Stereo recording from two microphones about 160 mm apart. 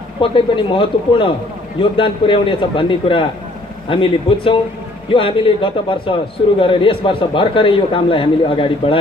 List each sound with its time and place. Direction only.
0.2 s a man's voice: 30° left (ahead or behind)